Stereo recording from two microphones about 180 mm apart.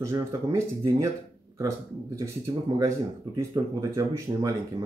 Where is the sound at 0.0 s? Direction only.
15° right (ahead or behind).